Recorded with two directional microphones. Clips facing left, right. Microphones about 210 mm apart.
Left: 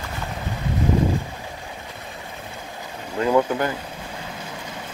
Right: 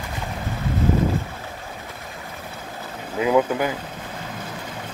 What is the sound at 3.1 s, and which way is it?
Speech, 5° right (ahead or behind).